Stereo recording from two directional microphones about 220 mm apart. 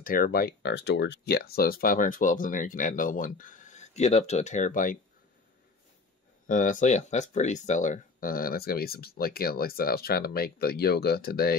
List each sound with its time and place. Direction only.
0.0 s speech: 40° left (ahead or behind)
6.4 s speech: 35° left (ahead or behind)